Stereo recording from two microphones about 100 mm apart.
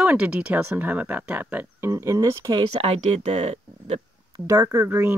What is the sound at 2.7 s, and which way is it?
Speech, 85° right.